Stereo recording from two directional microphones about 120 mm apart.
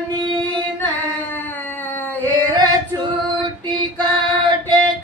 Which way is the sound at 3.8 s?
40° right (ahead or behind).